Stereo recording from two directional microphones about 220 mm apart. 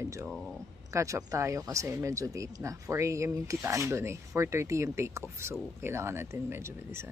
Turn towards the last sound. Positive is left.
turn(degrees=-10)  # may be behind; listen again after turning